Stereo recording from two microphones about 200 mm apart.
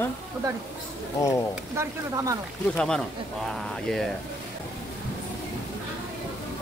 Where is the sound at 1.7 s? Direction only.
15° right (ahead or behind).